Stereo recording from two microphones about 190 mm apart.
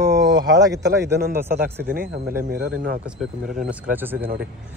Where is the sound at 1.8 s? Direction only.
55° right (ahead or behind).